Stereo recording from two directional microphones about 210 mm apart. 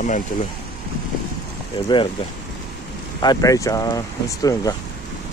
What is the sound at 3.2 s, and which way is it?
Speech, 20° left (ahead or behind).